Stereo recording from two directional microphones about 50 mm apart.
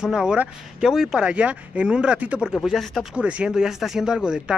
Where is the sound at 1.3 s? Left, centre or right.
Right.